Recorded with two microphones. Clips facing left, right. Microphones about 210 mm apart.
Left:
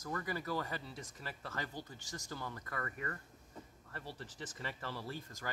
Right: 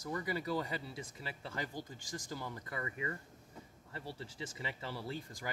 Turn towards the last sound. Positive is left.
turn(degrees=-15)  # may be behind; listen again after turning